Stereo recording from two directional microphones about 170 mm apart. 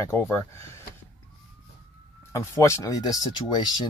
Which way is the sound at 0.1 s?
15° left (ahead or behind).